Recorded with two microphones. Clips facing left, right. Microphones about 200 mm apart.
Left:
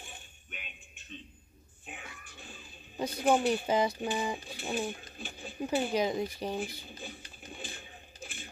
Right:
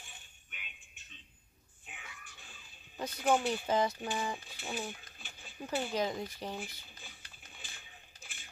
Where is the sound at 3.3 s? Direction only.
15° left (ahead or behind).